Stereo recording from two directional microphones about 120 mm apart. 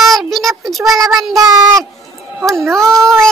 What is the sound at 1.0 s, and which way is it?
Child singing, 30° right (ahead or behind).